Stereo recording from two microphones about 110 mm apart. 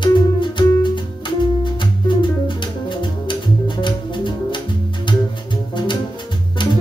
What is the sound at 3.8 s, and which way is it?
Music, 45° left (ahead or behind).